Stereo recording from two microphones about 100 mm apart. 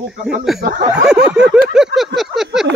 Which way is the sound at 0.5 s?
5° right (ahead or behind).